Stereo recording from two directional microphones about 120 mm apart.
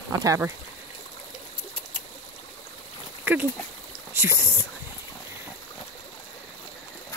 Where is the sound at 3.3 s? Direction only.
15° right (ahead or behind).